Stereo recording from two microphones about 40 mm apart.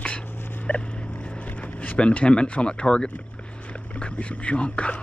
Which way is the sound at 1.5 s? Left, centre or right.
Left.